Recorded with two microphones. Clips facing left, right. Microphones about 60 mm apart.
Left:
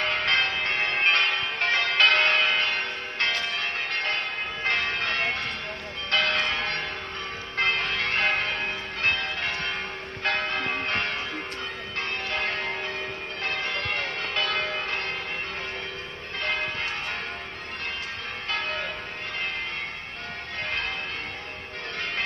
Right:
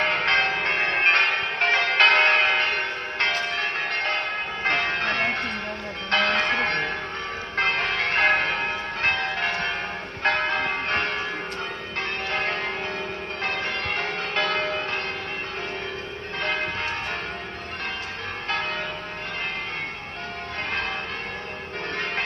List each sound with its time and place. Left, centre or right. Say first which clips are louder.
0.0 s change ringing: right 3 dB; right
2.0 s church bell: right 3 dB; right
4.6 s change ringing: right 3 dB; right
6.0 s church bell: right 3 dB; right
7.7 s music: right 3 dB; right
8.3 s church bell: right 4 dB; right
10.2 s change ringing: right 4 dB; right
13.5 s change ringing: right 1 dB; right